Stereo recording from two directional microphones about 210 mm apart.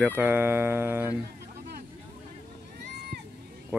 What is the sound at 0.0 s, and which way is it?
Speech, 10° right (ahead or behind).